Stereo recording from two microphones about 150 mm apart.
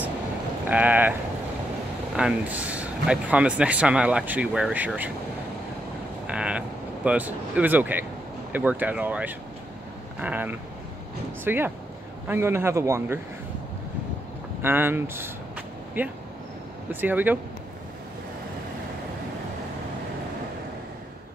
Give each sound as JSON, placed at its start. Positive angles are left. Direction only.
{"t": 0.7, "sound": "speech", "side_deg": -10}
{"t": 2.1, "sound": "speech", "side_deg": -10}
{"t": 6.2, "sound": "a sound", "side_deg": -5}
{"t": 7.1, "sound": "speech", "side_deg": -10}
{"t": 14.6, "sound": "vehicle", "side_deg": -15}
{"t": 16.9, "sound": "speech", "side_deg": -10}